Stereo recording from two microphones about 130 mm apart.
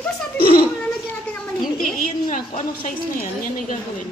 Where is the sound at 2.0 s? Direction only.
85° left.